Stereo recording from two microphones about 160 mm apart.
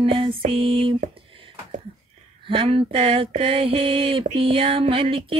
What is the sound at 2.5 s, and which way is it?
Mantra, 35° right (ahead or behind).